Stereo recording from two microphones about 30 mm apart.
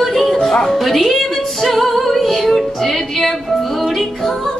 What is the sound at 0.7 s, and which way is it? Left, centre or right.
Music, centre.